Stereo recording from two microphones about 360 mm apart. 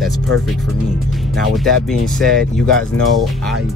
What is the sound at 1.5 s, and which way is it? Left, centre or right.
Speech, centre.